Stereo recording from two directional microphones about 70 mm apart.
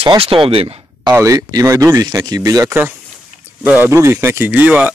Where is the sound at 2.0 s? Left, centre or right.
Right.